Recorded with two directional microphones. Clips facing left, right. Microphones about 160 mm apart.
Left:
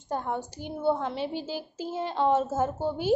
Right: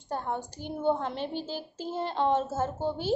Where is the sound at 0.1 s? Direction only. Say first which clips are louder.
Left 2 dB; 10° left (ahead or behind).